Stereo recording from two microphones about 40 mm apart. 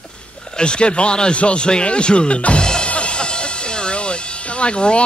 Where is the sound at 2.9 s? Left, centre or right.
Left.